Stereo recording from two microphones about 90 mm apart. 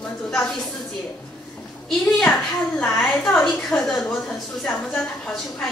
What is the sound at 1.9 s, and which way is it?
A woman's voice, 5° left (ahead or behind).